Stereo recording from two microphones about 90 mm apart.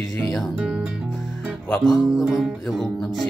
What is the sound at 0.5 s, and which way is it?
Speech, 10° right (ahead or behind).